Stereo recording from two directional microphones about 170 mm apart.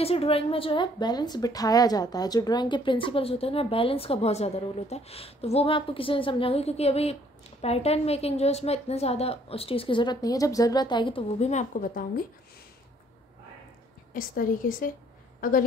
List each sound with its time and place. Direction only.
0.0 s a woman's voice: 35° left (ahead or behind); by 12.0 s 50° left (ahead or behind)
14.1 s a woman's voice: 55° left (ahead or behind)